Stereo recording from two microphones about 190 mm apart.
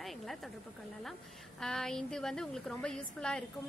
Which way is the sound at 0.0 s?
Centre (ahead or behind).